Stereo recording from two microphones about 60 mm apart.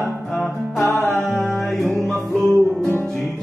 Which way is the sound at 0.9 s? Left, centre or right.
Left.